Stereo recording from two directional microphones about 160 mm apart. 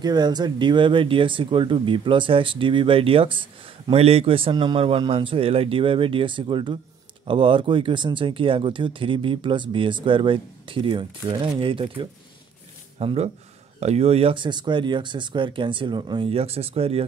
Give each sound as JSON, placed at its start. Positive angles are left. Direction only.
{"t": 0.0, "sound": "speech", "side_deg": -25}